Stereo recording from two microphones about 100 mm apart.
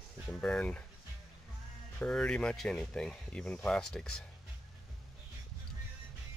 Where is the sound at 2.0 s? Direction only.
10° left (ahead or behind).